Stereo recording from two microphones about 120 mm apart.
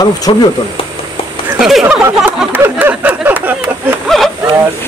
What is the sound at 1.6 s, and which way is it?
Speech, centre (ahead or behind).